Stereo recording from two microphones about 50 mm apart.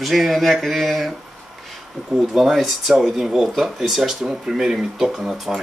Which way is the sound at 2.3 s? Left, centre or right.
Centre.